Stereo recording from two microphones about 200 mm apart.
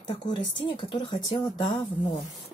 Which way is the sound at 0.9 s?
20° left (ahead or behind).